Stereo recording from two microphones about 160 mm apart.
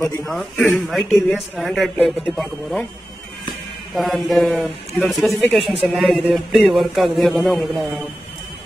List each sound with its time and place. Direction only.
0.0 s a man's voice: 20° left (ahead or behind)
0.3 s a man's voice: centre (ahead or behind)
3.9 s a man's voice: centre (ahead or behind)